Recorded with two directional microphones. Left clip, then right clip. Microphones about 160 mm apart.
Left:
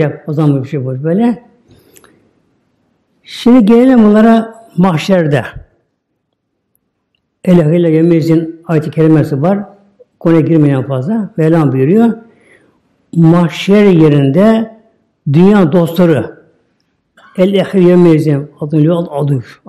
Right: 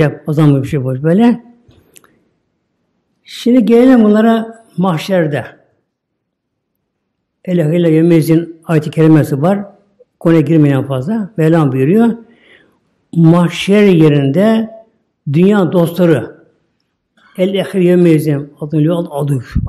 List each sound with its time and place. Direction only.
0.0 s a man's voice: 15° right (ahead or behind)
3.2 s a man's voice: 15° left (ahead or behind); by 5.6 s 30° left (ahead or behind)
7.4 s speech: 25° left (ahead or behind)
7.7 s a man's voice: 5° left (ahead or behind); by 19.6 s 10° right (ahead or behind)